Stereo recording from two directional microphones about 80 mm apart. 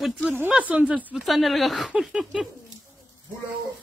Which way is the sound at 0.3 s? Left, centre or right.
Centre.